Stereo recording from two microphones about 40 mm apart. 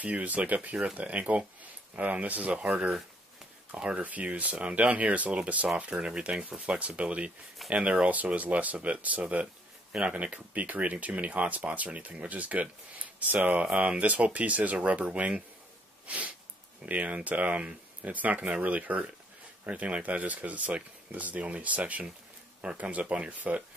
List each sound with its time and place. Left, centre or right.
0.0 s speech: right
3.7 s speech: right
4.0 s speech: right
5.9 s speech: right
7.0 s speech: right